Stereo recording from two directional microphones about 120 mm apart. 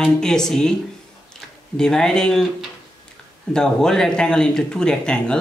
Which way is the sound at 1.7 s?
5° left (ahead or behind).